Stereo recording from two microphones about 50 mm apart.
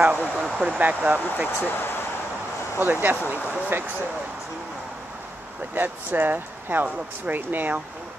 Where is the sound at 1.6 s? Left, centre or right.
Left.